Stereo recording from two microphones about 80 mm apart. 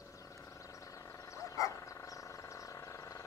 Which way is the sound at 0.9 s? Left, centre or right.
Left.